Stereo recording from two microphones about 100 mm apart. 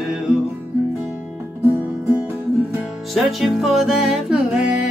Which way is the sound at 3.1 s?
Centre (ahead or behind).